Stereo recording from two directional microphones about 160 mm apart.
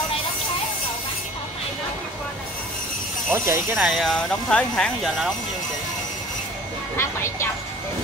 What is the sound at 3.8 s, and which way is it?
Speech, centre (ahead or behind).